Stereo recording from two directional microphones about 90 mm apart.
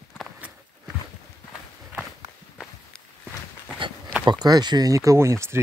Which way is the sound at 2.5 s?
10° left (ahead or behind).